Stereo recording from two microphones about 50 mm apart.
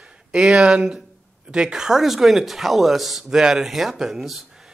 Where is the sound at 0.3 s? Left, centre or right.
Centre.